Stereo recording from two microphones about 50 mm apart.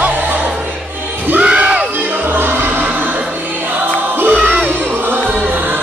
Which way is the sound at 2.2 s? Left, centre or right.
Right.